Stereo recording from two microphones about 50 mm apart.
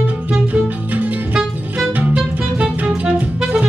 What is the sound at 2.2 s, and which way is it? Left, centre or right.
Music, right.